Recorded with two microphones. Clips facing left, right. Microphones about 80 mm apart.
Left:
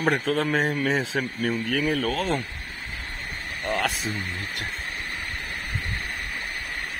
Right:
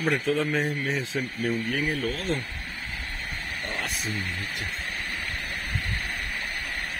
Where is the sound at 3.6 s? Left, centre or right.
Left.